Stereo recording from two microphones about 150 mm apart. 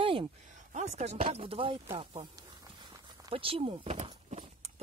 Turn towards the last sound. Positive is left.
turn(degrees=-50)  # may be behind; listen again after turning